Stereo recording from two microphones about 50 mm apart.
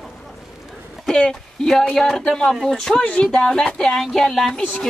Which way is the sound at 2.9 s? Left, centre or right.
Left.